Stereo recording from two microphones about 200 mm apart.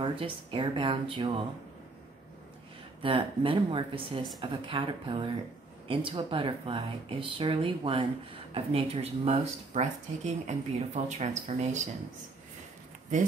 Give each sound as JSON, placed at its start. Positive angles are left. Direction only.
{"t": 0.0, "sound": "speech", "side_deg": -25}
{"t": 3.0, "sound": "speech", "side_deg": -25}